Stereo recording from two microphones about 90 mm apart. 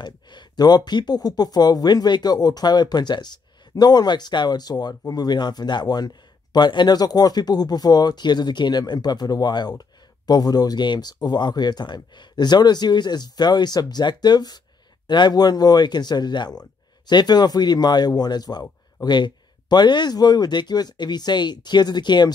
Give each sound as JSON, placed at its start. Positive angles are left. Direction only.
{"t": 0.0, "sound": "speech", "side_deg": 55}